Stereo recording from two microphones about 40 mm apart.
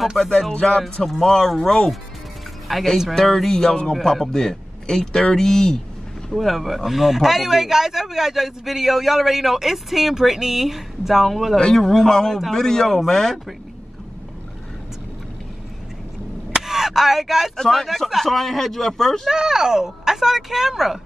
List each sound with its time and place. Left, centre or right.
0.2 s a man's voice: centre
6.3 s speech: centre
11.5 s a man's voice: centre
16.6 s speech: centre
17.6 s a man's voice: centre
19.2 s speech: centre